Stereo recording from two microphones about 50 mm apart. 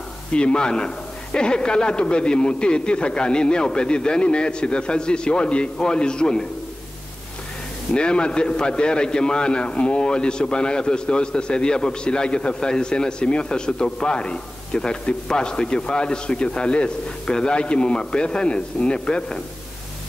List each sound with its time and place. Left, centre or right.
0.3 s a man's voice: left
7.9 s a man's voice: centre